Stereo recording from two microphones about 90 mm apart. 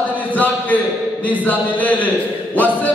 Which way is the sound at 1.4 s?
20° left (ahead or behind).